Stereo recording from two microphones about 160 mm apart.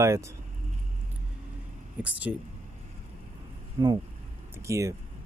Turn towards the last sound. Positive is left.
turn(degrees=-20)  # may be behind; listen again after turning